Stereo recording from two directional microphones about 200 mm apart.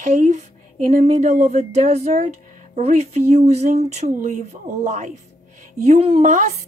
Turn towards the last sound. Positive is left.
turn(degrees=-35)  # may be behind; listen again after turning